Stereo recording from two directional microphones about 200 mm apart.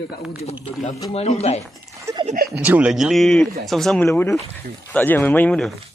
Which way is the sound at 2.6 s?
5° right (ahead or behind).